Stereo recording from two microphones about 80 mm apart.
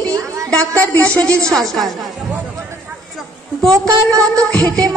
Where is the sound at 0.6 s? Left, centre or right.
Centre.